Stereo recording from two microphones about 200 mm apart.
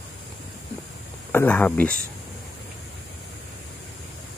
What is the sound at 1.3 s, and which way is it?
Speech, 10° left (ahead or behind).